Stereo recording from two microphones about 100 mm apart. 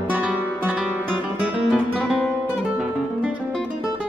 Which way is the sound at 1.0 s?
15° right (ahead or behind).